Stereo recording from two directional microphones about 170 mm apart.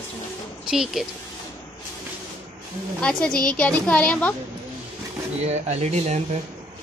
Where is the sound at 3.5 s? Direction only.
5° left (ahead or behind).